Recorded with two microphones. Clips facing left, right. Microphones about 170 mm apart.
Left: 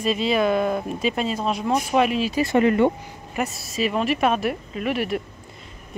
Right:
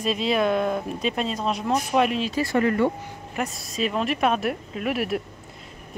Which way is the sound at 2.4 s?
20° left (ahead or behind).